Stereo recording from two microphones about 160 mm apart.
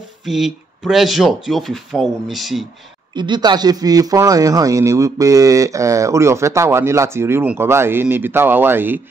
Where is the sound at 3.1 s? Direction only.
25° right (ahead or behind).